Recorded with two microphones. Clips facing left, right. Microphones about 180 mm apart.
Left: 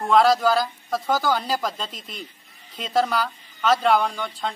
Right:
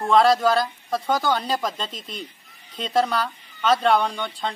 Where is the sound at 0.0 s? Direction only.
Centre (ahead or behind).